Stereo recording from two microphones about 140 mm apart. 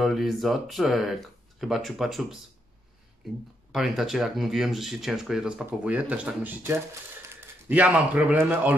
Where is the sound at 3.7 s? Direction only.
5° right (ahead or behind).